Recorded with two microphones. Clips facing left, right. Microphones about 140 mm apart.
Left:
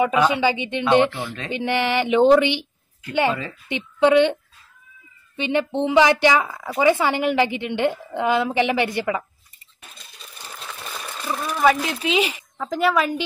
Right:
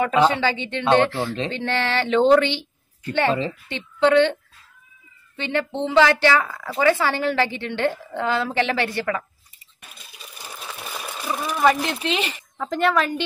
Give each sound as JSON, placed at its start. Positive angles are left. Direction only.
{"t": 0.3, "sound": "speech", "side_deg": 15}
{"t": 10.1, "sound": "sewing machine", "side_deg": -10}
{"t": 11.6, "sound": "speech", "side_deg": 0}